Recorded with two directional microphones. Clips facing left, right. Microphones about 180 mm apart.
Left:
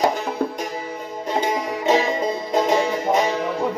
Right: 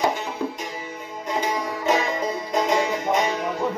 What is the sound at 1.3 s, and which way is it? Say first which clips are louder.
Music: left 3 dB; 25° left (ahead or behind).